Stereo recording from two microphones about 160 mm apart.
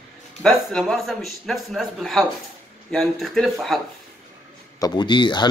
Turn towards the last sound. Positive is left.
turn(degrees=30)  # may be behind; listen again after turning